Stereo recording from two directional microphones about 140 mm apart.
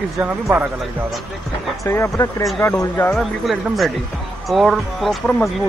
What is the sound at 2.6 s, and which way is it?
Speech, 15° left (ahead or behind).